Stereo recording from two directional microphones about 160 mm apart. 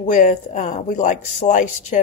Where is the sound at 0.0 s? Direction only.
55° left (ahead or behind).